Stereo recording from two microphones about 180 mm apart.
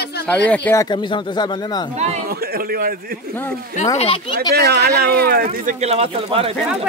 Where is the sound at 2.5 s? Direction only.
60° right (ahead or behind).